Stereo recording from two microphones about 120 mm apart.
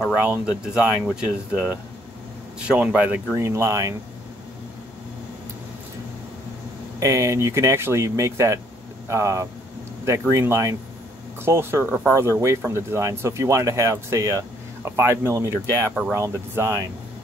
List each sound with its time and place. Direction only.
0.1 s speech: 10° right (ahead or behind)
3.3 s speech: 25° right (ahead or behind)
7.0 s speech: 25° right (ahead or behind)